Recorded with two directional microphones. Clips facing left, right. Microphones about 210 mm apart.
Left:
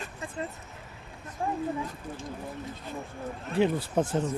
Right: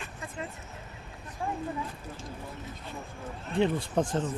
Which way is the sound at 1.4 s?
45° left (ahead or behind).